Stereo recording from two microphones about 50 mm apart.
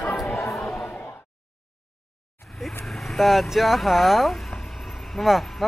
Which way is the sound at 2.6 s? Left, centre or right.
Centre.